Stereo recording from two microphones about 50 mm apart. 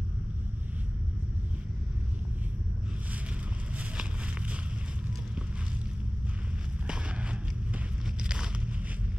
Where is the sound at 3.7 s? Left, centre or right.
Right.